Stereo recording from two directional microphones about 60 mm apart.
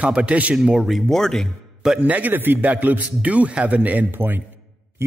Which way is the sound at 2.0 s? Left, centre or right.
Right.